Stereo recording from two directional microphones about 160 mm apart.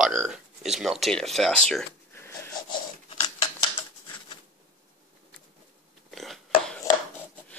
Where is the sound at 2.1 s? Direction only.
15° left (ahead or behind).